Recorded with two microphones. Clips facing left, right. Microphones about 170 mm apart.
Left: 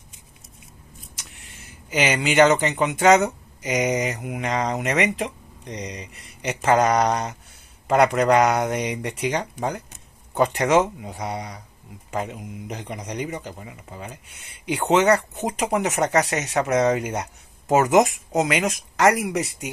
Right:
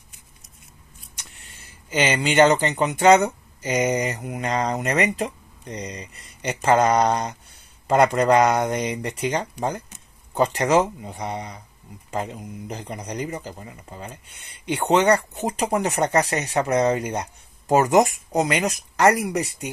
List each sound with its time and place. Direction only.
1.1 s vehicle: centre (ahead or behind)
2.5 s speech: centre (ahead or behind)